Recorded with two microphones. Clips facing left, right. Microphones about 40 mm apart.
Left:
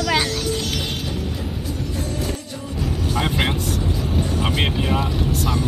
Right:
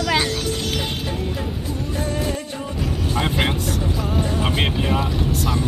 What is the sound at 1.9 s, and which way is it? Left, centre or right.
Music, right.